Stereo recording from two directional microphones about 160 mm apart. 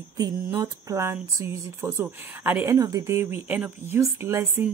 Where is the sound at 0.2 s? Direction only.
20° right (ahead or behind).